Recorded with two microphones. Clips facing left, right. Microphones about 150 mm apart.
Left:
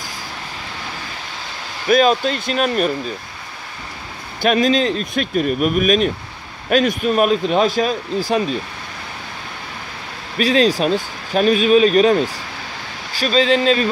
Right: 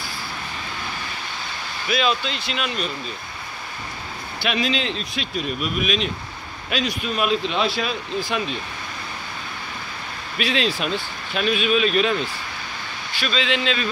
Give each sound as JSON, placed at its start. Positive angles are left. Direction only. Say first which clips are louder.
{"t": 1.9, "sound": "speech", "louder": "left 9 dB", "side_deg": 45}
{"t": 4.4, "sound": "speech", "louder": "left 8 dB", "side_deg": 45}
{"t": 10.4, "sound": "speech", "louder": "left 8 dB", "side_deg": 40}